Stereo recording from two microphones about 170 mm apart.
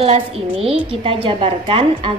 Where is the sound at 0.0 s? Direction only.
35° right (ahead or behind).